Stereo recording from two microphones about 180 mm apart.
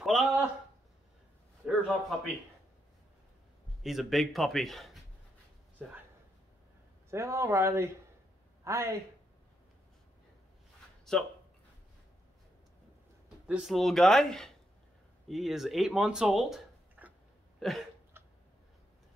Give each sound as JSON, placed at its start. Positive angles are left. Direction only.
{"t": 0.0, "sound": "a sound", "side_deg": 0}
{"t": 1.6, "sound": "a sound", "side_deg": -5}
{"t": 3.8, "sound": "a man's voice", "side_deg": 0}
{"t": 7.1, "sound": "speech", "side_deg": -15}
{"t": 11.1, "sound": "speech", "side_deg": 0}
{"t": 13.5, "sound": "a man's voice", "side_deg": -5}
{"t": 17.6, "sound": "hiccup", "side_deg": 0}
{"t": 18.1, "sound": "tick-tock", "side_deg": -15}